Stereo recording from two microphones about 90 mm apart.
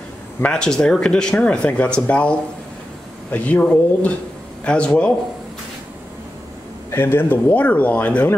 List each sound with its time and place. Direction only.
0.4 s speech: 10° left (ahead or behind)
6.9 s speech: 25° left (ahead or behind)